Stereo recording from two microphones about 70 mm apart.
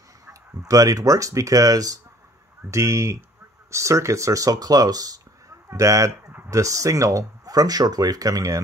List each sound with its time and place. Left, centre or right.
0.3 s speech: right
2.7 s speech: right
5.7 s speech: right